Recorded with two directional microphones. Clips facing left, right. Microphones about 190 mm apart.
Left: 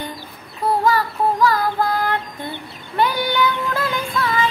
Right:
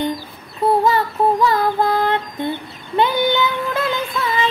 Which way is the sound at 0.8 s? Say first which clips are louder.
Right 2 dB; 25° right (ahead or behind).